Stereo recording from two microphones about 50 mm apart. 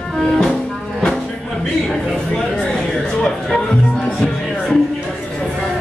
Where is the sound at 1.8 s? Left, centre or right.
Centre.